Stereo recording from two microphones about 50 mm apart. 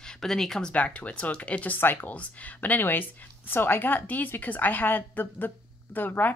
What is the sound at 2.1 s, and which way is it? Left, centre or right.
A woman's voice, left.